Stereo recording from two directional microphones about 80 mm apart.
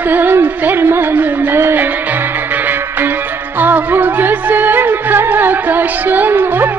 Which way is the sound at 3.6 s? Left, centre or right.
Right.